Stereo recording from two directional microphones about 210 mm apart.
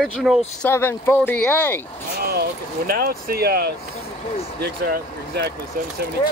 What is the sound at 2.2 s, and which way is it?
Speech, 45° right (ahead or behind).